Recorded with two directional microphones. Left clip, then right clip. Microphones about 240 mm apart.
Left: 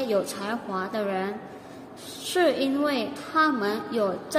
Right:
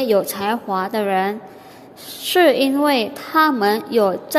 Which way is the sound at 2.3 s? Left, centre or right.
Right.